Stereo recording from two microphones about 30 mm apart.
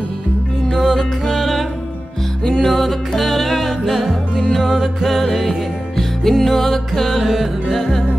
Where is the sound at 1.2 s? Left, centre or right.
Centre.